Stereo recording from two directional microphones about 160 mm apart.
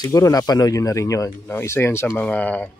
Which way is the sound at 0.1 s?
20° left (ahead or behind).